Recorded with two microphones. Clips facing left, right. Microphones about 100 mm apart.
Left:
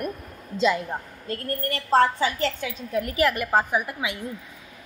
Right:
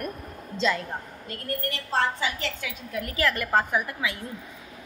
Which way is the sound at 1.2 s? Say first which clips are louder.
Left 3 dB; 40° left (ahead or behind).